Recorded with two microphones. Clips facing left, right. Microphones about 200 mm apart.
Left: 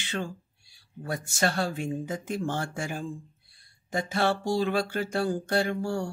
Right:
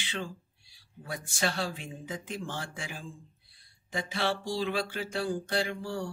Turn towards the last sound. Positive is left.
turn(degrees=45)  # may be behind; listen again after turning